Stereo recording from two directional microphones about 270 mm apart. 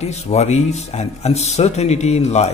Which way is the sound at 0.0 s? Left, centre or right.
Left.